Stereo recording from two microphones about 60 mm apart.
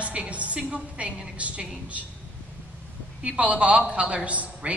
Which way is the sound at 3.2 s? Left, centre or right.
Right.